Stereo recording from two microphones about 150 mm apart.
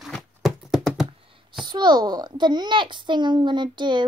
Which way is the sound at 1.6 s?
30° right (ahead or behind).